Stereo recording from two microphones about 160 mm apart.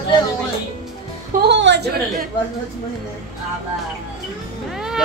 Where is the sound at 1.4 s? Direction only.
90° right.